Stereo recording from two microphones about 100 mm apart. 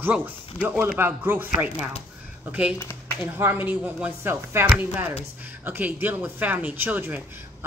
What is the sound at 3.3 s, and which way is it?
Speech, 20° right (ahead or behind).